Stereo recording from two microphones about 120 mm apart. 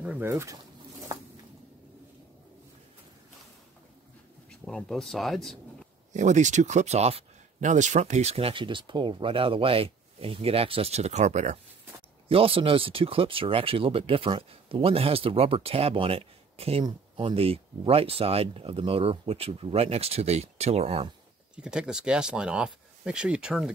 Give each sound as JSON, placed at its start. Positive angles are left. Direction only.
{"t": 0.0, "sound": "speech", "side_deg": -10}
{"t": 0.3, "sound": "speech", "side_deg": -25}
{"t": 4.6, "sound": "speech", "side_deg": 5}
{"t": 6.1, "sound": "speech", "side_deg": -90}
{"t": 12.3, "sound": "speech", "side_deg": -50}
{"t": 21.5, "sound": "speech", "side_deg": -5}